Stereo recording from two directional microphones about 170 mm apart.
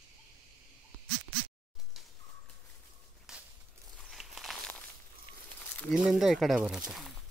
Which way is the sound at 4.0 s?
Centre (ahead or behind).